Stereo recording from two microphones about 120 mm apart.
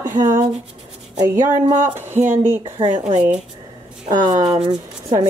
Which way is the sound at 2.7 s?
50° right (ahead or behind).